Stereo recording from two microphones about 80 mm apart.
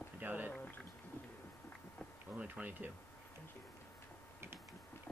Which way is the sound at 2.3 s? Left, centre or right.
Centre.